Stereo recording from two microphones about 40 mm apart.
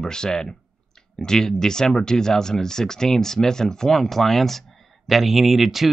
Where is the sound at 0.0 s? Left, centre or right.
Centre.